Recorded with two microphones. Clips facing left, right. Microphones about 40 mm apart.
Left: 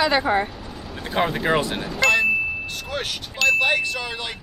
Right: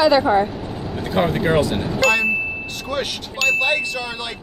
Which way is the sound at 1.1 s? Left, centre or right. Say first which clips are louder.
Right 2 dB; centre.